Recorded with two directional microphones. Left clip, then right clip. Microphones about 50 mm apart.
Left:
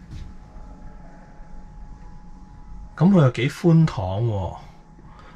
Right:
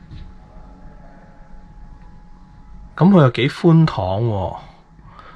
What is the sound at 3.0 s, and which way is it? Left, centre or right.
Speech, left.